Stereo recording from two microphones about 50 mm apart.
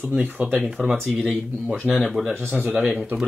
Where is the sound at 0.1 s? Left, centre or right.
Right.